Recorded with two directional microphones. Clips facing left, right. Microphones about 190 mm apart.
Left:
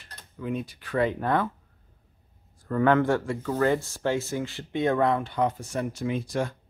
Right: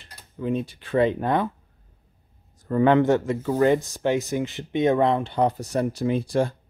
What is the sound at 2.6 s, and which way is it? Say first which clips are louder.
Speech: right 4 dB; 20° right (ahead or behind).